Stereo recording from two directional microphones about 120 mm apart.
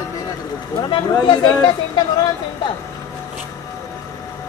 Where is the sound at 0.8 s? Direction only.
40° left (ahead or behind).